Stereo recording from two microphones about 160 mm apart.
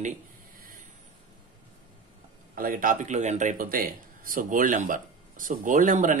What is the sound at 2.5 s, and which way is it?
A man's voice, 60° right (ahead or behind).